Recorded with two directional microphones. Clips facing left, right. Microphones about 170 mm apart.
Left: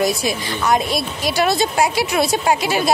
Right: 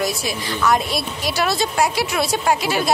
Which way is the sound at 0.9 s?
Centre (ahead or behind).